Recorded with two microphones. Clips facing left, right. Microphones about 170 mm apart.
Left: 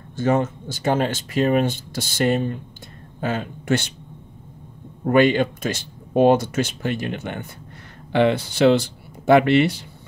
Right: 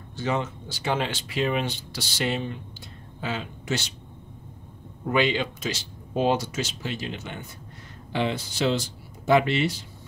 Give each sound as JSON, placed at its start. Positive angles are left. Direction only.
{"t": 0.1, "sound": "speech", "side_deg": 50}
{"t": 5.0, "sound": "speech", "side_deg": 50}